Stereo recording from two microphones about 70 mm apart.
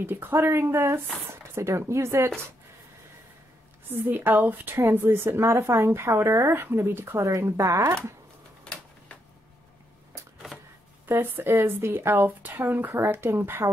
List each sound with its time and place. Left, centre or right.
0.0 s speech: right
4.1 s a woman's voice: right
7.2 s speech: right
8.7 s a sound: centre
11.1 s a woman's voice: right